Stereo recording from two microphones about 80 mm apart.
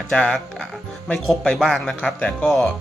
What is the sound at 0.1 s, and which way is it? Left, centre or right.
Speech, centre.